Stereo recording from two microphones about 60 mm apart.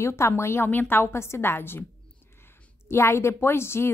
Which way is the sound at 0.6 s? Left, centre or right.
Left.